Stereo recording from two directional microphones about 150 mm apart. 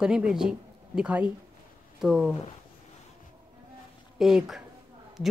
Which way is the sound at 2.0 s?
Centre (ahead or behind).